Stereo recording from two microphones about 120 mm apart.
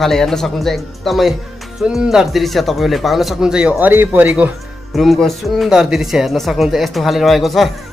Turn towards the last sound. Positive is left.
turn(degrees=0)  # may be behind; listen again after turning